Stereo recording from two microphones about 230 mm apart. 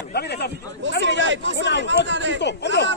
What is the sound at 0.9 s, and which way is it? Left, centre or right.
Speech, left.